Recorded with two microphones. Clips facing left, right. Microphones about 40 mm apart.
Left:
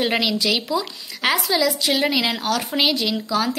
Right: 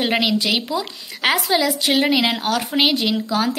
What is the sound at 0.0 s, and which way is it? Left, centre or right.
Speech, centre.